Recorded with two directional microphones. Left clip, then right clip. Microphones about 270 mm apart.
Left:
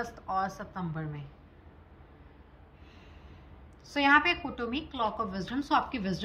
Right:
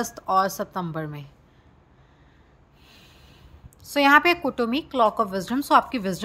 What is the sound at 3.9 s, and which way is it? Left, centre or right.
A woman's voice, centre.